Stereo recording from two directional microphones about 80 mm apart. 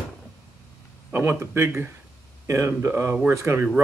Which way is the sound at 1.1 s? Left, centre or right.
Right.